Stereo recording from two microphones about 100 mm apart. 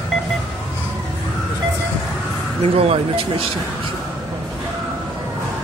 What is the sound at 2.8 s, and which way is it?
Speech, 70° right (ahead or behind).